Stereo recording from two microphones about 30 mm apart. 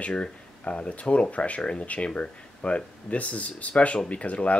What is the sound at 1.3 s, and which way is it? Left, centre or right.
Speech, left.